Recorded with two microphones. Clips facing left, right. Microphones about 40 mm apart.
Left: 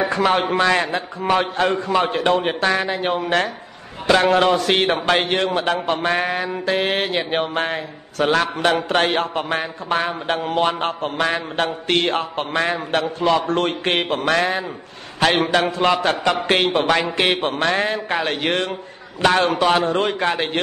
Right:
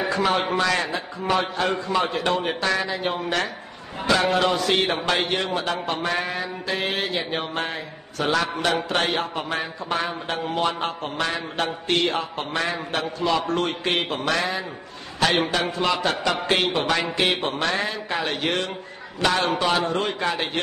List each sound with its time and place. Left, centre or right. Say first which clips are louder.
0.3 s a man's voice: left 5 dB; left
2.9 s a man's voice: left 4 dB; left
4.3 s a man's voice: left 5 dB; left
15.1 s a man's voice: left 4 dB; left